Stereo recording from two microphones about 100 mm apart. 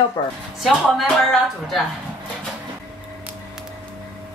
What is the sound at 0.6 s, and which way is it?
Speech, centre (ahead or behind).